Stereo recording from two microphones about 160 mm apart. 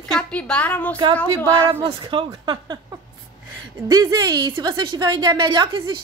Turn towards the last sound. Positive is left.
turn(degrees=-30)  # may be behind; listen again after turning